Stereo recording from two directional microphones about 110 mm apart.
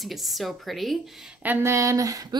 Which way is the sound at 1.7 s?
30° right (ahead or behind).